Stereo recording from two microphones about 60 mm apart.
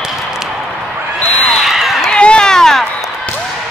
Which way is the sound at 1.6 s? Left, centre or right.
Centre.